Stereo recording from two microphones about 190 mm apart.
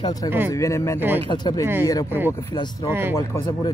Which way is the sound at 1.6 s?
10° right (ahead or behind).